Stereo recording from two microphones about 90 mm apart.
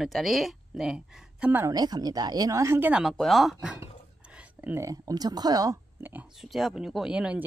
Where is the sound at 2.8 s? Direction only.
15° right (ahead or behind).